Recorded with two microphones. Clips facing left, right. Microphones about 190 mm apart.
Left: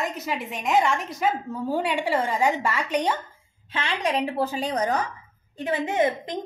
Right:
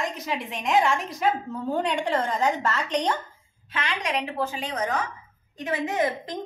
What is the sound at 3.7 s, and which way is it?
A woman's voice, 30° left (ahead or behind).